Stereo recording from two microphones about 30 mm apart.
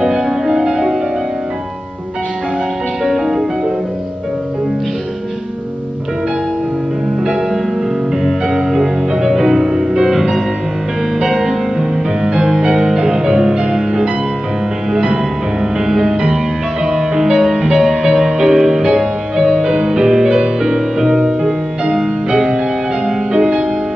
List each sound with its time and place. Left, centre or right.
0.0 s music: centre
3.0 s music: centre
8.2 s music: centre
12.2 s music: right